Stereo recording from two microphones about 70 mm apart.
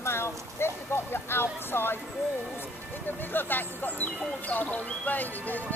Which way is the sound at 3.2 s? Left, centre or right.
Left.